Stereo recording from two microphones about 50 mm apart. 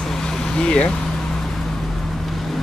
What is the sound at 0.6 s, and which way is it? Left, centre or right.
Speech, centre.